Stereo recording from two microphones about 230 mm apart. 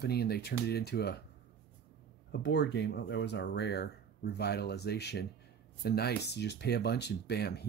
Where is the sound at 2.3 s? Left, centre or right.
Left.